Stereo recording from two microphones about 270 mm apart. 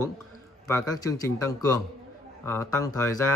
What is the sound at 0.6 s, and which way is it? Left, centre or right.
Speech, centre.